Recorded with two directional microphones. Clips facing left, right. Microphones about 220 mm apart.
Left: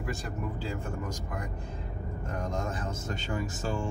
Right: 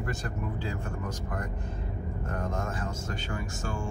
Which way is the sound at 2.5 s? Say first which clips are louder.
Even; 20° left (ahead or behind).